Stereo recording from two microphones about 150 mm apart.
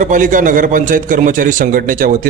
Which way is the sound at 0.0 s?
60° right (ahead or behind).